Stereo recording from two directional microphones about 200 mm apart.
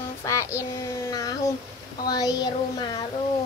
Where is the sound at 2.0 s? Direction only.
20° left (ahead or behind).